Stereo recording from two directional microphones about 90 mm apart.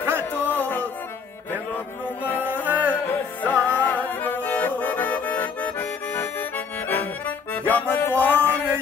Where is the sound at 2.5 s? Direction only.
20° right (ahead or behind).